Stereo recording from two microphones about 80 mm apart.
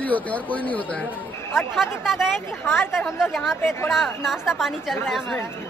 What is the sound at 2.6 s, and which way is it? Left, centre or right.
Speech, left.